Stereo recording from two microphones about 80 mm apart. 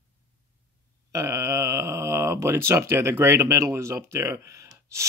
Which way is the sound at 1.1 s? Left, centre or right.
Right.